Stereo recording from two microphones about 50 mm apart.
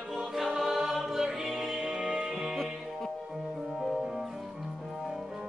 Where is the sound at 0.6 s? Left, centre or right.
Centre.